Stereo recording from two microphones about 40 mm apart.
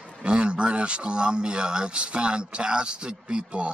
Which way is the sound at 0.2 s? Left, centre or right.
Right.